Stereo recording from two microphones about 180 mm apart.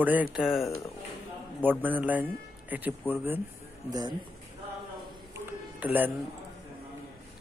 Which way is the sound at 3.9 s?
20° right (ahead or behind).